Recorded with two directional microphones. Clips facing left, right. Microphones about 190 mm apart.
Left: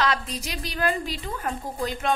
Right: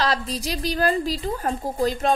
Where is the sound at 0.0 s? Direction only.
35° right (ahead or behind).